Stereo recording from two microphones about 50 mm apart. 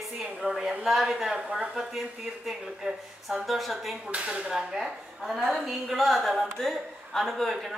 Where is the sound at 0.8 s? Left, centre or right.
Centre.